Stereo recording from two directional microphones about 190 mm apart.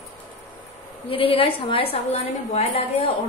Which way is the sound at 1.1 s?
30° left (ahead or behind).